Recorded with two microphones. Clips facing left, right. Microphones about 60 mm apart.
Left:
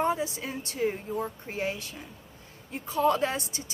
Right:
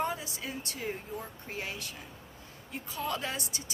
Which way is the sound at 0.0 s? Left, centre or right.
Left.